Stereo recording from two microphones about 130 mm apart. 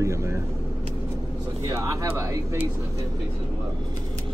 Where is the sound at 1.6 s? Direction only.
25° right (ahead or behind).